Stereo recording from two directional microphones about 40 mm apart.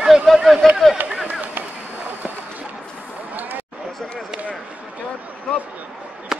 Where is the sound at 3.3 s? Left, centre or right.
Right.